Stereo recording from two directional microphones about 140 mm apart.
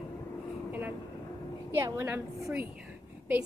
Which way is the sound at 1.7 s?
20° right (ahead or behind).